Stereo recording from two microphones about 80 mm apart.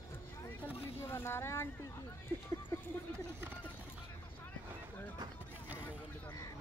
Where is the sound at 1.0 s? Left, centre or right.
Left.